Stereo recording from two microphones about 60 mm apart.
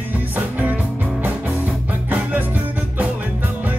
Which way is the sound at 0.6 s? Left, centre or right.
Right.